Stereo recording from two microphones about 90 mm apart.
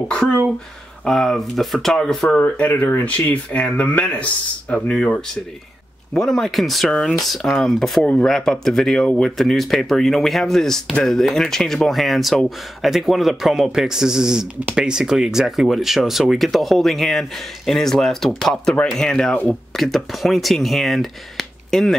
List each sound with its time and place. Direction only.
0.1 s speech: 10° left (ahead or behind)
2.2 s speech: 15° left (ahead or behind)